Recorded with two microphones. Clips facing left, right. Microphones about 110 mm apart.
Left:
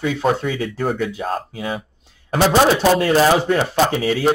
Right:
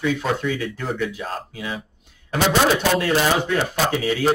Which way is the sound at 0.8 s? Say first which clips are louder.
Left 7 dB; 50° left (ahead or behind).